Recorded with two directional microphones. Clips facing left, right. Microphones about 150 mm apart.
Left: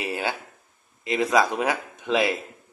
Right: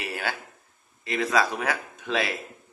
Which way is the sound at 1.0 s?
20° left (ahead or behind).